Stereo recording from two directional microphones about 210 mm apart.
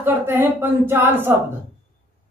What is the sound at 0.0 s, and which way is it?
Speech, 10° right (ahead or behind).